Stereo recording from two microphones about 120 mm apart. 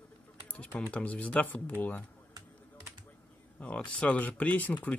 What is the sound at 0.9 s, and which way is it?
Speech, 10° left (ahead or behind).